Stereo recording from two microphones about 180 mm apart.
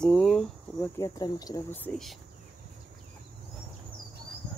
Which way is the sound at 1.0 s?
20° left (ahead or behind).